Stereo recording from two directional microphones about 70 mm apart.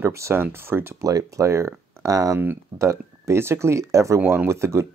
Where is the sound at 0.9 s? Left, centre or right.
Right.